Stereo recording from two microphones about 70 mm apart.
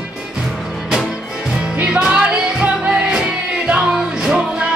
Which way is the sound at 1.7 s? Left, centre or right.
Centre.